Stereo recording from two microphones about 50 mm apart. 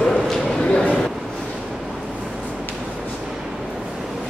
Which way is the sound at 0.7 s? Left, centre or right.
Left.